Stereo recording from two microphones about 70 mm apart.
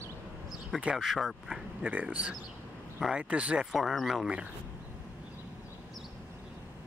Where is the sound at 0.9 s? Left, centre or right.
Centre.